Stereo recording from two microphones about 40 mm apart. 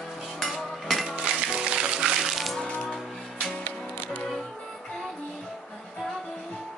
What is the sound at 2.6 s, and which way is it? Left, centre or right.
Music, left.